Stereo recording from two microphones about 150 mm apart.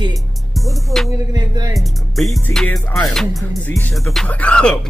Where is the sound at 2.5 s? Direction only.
5° left (ahead or behind).